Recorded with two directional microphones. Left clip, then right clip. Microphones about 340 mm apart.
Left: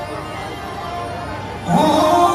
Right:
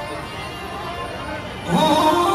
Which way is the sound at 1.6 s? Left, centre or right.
Centre.